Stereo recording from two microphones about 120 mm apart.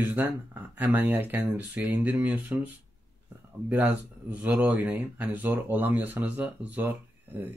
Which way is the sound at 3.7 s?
15° right (ahead or behind).